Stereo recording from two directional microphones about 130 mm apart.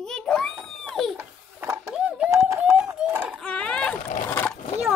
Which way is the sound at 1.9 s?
5° right (ahead or behind).